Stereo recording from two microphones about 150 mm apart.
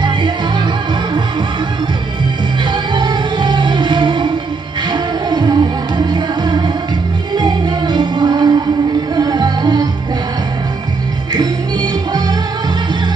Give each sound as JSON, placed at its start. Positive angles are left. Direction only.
{"t": 2.9, "sound": "music", "side_deg": -30}
{"t": 11.3, "sound": "music", "side_deg": -25}